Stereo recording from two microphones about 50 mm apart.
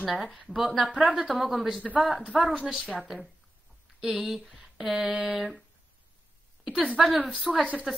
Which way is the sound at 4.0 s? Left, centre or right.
Centre.